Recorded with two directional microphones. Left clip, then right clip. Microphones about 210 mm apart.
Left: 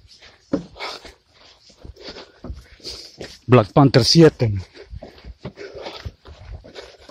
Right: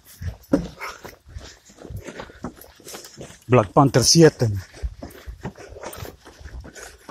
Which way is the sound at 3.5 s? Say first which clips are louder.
Left 2 dB; 35° left (ahead or behind).